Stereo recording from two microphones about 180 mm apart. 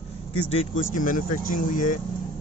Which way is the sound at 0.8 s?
50° left (ahead or behind).